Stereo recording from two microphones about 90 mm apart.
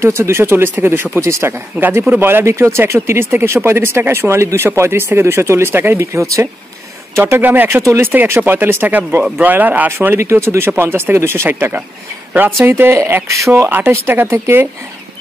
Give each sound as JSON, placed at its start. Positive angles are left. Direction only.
{"t": 0.0, "sound": "speech", "side_deg": -30}
{"t": 13.7, "sound": "speech", "side_deg": -25}